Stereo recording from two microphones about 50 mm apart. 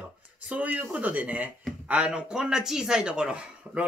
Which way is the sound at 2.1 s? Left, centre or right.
Centre.